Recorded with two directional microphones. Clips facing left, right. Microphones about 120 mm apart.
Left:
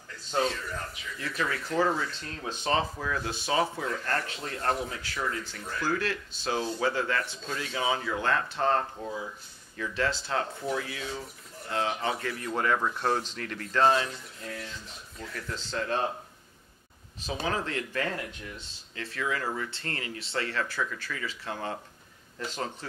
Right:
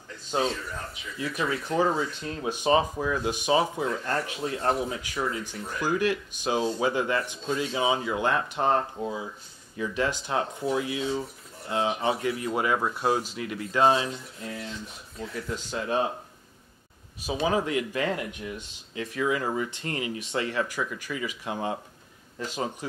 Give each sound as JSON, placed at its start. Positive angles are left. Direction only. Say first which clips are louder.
{"t": 1.1, "sound": "speech", "louder": "right 3 dB", "side_deg": -15}
{"t": 4.2, "sound": "speech", "louder": "right 5 dB", "side_deg": -10}
{"t": 17.2, "sound": "speech", "louder": "right 5 dB", "side_deg": -10}